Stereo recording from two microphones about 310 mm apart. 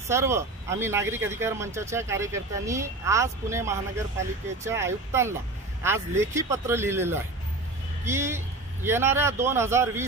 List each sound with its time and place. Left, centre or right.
0.1 s speech: centre